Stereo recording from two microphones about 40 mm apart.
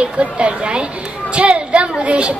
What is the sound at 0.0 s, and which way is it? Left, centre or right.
A woman's voice, right.